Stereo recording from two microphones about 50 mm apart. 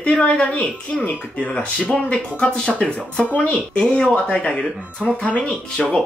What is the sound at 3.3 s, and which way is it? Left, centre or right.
Speech, left.